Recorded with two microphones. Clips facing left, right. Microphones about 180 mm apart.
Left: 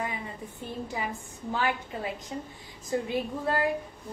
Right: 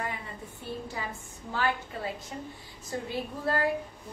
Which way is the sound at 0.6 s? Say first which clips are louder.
Left 2 dB; 15° left (ahead or behind).